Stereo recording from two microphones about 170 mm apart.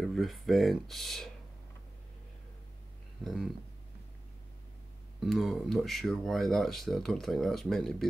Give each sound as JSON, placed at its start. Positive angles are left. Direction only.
{"t": 0.0, "sound": "speech", "side_deg": 0}
{"t": 3.2, "sound": "speech", "side_deg": 5}
{"t": 5.2, "sound": "speech", "side_deg": 0}